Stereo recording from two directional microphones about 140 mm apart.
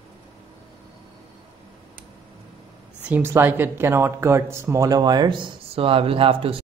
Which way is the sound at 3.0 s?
15° right (ahead or behind).